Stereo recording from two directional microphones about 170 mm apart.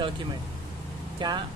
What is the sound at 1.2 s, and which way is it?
Speech, 25° right (ahead or behind).